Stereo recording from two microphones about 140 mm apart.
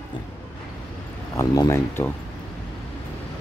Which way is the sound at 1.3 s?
25° left (ahead or behind).